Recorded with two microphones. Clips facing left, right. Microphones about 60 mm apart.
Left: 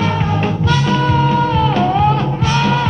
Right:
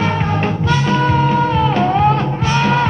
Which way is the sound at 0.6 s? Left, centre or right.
Right.